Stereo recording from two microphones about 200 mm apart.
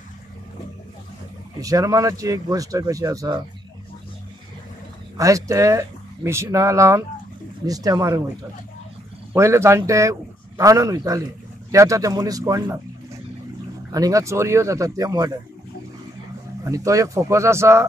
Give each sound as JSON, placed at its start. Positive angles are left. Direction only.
{"t": 1.6, "sound": "speech", "side_deg": -15}
{"t": 5.1, "sound": "speech", "side_deg": -15}
{"t": 9.3, "sound": "speech", "side_deg": -15}
{"t": 13.9, "sound": "speech", "side_deg": -15}
{"t": 16.6, "sound": "speech", "side_deg": -15}